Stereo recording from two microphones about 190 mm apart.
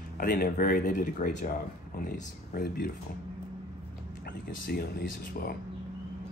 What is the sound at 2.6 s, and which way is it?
Speech, 55° left (ahead or behind).